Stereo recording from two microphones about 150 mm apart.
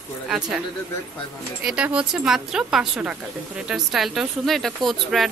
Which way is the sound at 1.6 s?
10° right (ahead or behind).